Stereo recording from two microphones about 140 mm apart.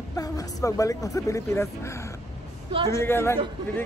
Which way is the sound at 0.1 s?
25° left (ahead or behind).